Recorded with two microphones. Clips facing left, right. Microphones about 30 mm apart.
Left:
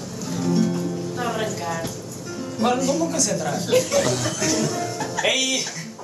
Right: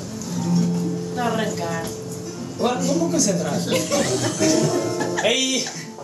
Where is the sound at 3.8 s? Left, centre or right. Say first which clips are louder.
Left 1 dB; centre.